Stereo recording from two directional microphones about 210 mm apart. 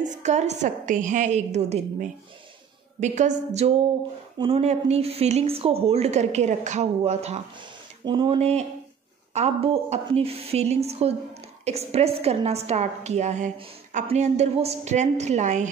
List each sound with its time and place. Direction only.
0.0 s a woman's voice: 35° right (ahead or behind)